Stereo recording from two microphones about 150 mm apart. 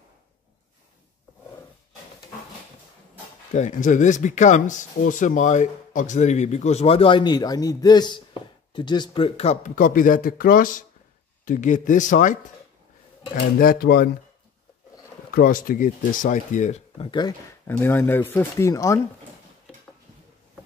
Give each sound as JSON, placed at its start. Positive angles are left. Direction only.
{"t": 3.5, "sound": "speech", "side_deg": 55}
{"t": 9.8, "sound": "speech", "side_deg": 65}
{"t": 13.6, "sound": "speech", "side_deg": 80}
{"t": 15.3, "sound": "speech", "side_deg": 70}
{"t": 17.0, "sound": "speech", "side_deg": 30}
{"t": 17.6, "sound": "speech", "side_deg": 15}